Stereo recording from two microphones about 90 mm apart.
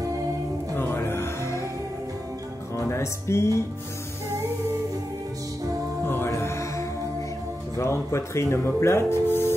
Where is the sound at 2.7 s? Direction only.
30° left (ahead or behind).